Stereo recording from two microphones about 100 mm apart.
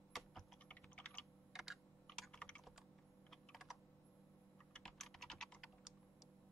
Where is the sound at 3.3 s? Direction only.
5° right (ahead or behind).